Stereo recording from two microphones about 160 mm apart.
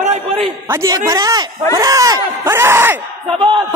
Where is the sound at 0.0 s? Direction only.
40° right (ahead or behind).